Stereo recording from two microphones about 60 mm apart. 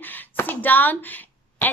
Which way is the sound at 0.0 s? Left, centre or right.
Left.